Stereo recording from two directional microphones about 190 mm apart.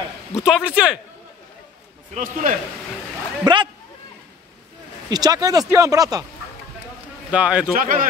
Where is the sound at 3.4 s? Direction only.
25° right (ahead or behind).